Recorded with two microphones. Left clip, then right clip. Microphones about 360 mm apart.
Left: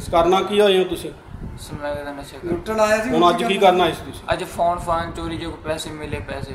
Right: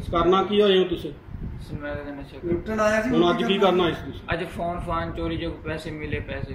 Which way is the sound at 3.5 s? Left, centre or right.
Centre.